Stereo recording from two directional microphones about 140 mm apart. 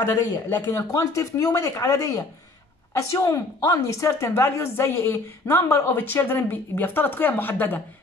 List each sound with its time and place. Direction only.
0.0 s a woman's voice: 15° left (ahead or behind)